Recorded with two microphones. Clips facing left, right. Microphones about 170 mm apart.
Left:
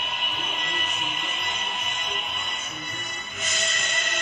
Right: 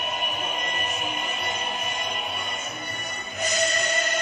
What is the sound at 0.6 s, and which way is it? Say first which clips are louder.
Music: right 3 dB; 40° right (ahead or behind).